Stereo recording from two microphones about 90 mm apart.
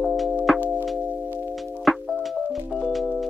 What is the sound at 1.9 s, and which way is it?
Music, centre (ahead or behind).